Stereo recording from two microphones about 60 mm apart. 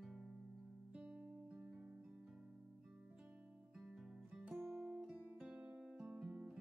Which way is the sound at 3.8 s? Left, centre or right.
Centre.